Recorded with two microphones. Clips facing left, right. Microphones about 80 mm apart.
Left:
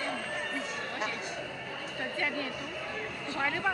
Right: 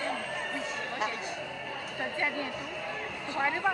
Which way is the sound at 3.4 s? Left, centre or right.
Centre.